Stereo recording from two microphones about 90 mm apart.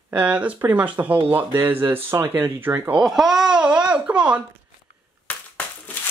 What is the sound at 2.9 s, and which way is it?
Speech, 5° right (ahead or behind).